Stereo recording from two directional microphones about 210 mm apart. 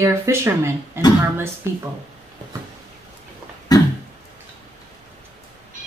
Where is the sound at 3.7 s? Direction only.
20° left (ahead or behind).